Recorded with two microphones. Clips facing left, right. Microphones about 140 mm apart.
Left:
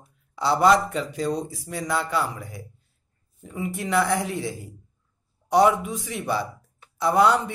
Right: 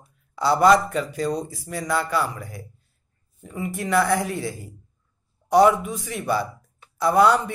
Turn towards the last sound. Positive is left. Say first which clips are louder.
# right 2 dB
turn(degrees=20)  # may be behind; listen again after turning